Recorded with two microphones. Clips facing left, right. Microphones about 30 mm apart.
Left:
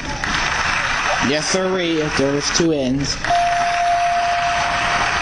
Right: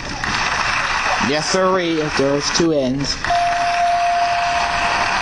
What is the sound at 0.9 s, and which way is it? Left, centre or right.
Speech, centre.